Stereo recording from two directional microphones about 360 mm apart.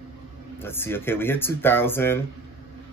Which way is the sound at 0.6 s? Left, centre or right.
Centre.